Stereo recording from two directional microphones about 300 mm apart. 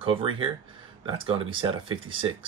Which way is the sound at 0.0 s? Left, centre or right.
Centre.